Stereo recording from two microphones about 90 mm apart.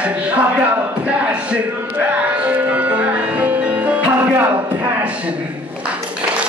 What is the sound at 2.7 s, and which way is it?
Music, 15° right (ahead or behind).